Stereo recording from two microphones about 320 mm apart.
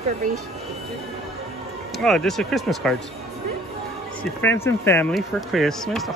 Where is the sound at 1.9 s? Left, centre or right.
Centre.